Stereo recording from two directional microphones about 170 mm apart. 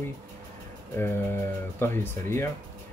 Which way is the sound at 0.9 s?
15° left (ahead or behind).